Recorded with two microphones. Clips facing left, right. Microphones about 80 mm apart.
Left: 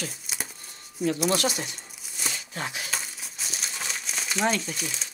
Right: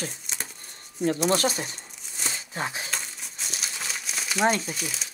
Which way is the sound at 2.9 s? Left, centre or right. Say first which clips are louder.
Even; centre.